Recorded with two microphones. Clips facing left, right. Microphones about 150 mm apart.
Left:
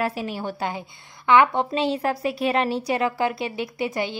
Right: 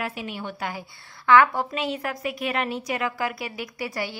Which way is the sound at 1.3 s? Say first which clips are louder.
Left 1 dB; 20° left (ahead or behind).